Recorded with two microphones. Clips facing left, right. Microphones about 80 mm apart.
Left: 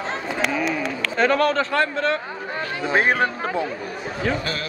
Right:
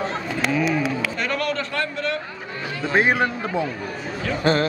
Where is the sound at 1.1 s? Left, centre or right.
Left.